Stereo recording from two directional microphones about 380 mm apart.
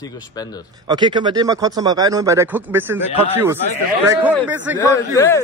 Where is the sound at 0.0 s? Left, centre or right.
Centre.